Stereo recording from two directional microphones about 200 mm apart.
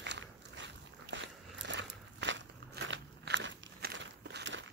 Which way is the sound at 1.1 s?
65° right (ahead or behind).